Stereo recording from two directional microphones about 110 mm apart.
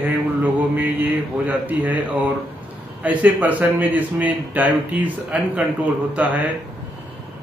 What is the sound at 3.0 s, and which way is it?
Speech, 15° right (ahead or behind).